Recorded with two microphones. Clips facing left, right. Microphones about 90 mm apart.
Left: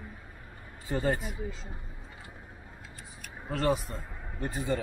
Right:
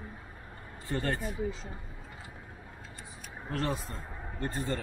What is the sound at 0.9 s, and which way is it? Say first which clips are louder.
Speech: left 3 dB; 15° left (ahead or behind).